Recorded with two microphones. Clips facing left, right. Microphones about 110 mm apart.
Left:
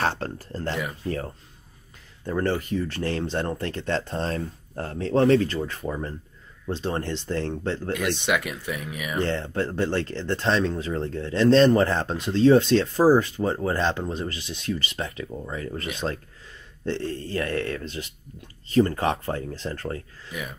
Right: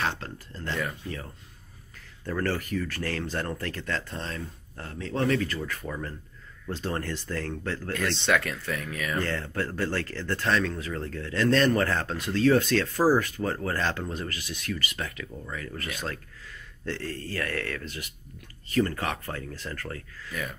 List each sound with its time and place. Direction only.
0.0 s speech: 40° left (ahead or behind)
2.2 s speech: 20° left (ahead or behind)